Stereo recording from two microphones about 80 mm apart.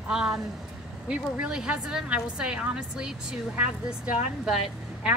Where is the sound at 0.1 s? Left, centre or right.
Centre.